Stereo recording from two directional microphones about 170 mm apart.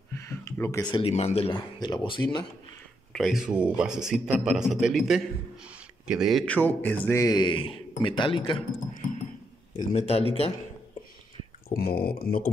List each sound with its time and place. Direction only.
0.1 s a sound: 15° left (ahead or behind)
0.9 s speech: 35° left (ahead or behind)
3.1 s a man's voice: centre (ahead or behind); by 8.6 s 30° left (ahead or behind)
9.8 s speech: 40° left (ahead or behind)
11.7 s speech: 60° left (ahead or behind)